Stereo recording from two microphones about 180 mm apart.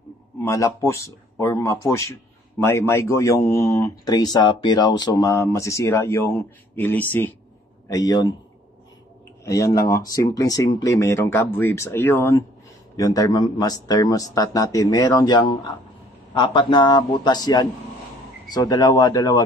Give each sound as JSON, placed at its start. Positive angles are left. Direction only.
{"t": 0.4, "sound": "speech", "side_deg": 15}
{"t": 7.9, "sound": "speech", "side_deg": 20}
{"t": 9.4, "sound": "speech", "side_deg": 15}